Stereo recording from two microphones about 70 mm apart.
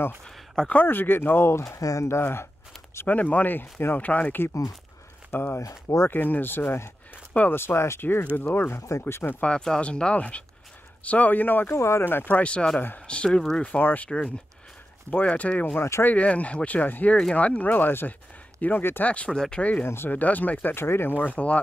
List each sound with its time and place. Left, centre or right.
0.6 s speech: centre
0.8 s speech: left
1.8 s speech: left
2.0 s speech: left
3.1 s speech: left
5.6 s speech: left
6.0 s speech: left
9.4 s speech: centre
19.0 s speech: centre
19.8 s speech: left
20.7 s speech: left
21.2 s speech: left